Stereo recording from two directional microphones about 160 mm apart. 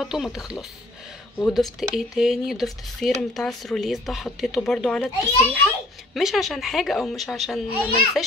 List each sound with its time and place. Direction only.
0.0 s speech: 5° right (ahead or behind)